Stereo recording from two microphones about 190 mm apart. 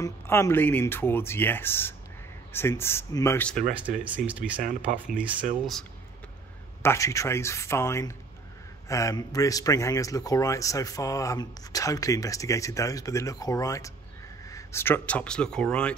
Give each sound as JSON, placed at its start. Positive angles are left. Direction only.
{"t": 0.0, "sound": "speech", "side_deg": 15}
{"t": 4.0, "sound": "speech", "side_deg": -5}
{"t": 6.8, "sound": "speech", "side_deg": 15}